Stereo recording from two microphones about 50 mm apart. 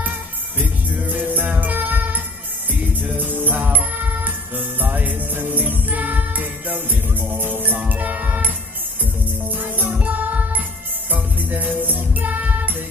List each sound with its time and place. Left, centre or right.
0.0 s music: right